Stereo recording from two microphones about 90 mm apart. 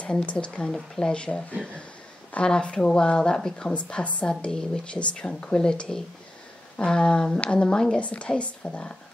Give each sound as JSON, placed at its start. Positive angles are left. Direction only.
{"t": 0.0, "sound": "a woman's voice", "side_deg": 15}